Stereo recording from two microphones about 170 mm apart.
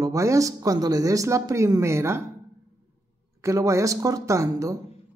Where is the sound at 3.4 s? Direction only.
20° right (ahead or behind).